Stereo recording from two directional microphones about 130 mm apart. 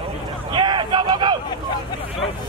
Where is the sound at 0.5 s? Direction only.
35° right (ahead or behind).